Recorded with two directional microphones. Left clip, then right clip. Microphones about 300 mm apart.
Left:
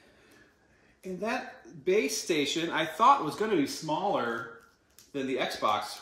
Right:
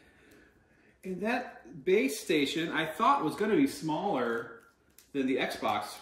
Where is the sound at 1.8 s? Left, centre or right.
Centre.